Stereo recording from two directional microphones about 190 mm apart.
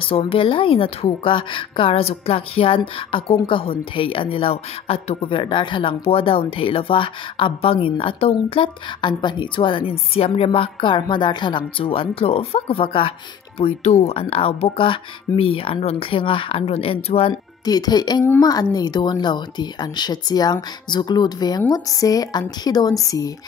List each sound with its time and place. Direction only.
0.0 s a woman's voice: 30° left (ahead or behind)